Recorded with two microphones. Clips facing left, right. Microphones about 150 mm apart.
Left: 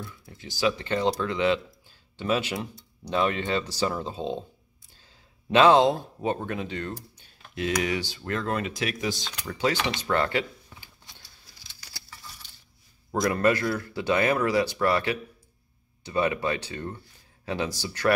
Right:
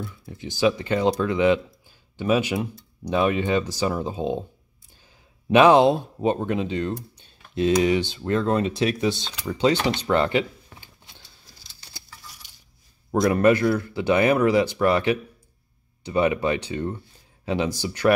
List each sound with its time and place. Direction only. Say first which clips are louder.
0.0 s speech: right 6 dB; 15° right (ahead or behind)
5.5 s speech: right 3 dB; 15° right (ahead or behind)
10.0 s a sound: right 4 dB; 20° right (ahead or behind)
11.8 s keys jangling: right 2 dB; 25° right (ahead or behind)
13.1 s speech: right 5 dB; 20° right (ahead or behind)